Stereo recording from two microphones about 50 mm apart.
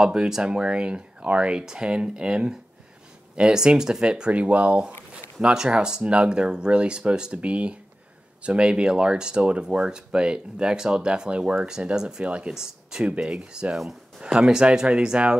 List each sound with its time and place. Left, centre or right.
0.0 s speech: centre
4.3 s speech: right
13.7 s speech: centre
14.2 s speech: centre